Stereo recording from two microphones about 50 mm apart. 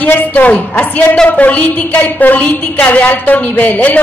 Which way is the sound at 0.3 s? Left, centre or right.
Left.